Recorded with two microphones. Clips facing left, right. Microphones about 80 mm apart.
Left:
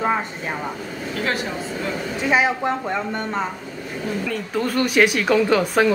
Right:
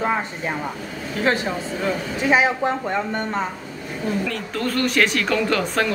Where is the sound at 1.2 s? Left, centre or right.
Right.